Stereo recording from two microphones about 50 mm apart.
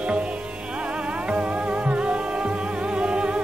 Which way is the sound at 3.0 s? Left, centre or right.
Right.